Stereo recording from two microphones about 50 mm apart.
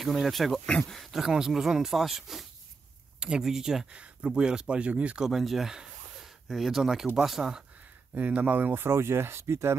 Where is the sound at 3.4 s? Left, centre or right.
Centre.